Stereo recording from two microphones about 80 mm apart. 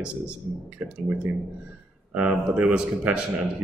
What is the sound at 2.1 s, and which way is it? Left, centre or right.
Speech, centre.